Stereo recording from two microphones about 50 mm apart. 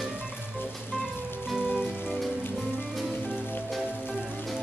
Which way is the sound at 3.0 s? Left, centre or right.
Centre.